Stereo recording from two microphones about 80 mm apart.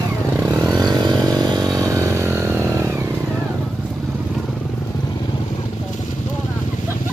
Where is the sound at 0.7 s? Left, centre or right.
Right.